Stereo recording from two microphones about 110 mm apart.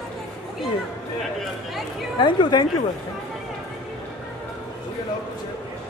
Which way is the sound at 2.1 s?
45° left (ahead or behind).